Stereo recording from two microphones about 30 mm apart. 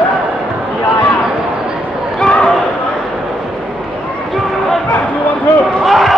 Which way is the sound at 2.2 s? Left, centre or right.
Left.